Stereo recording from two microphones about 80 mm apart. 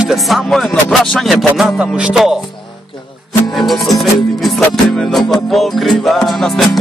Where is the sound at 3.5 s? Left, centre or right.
Centre.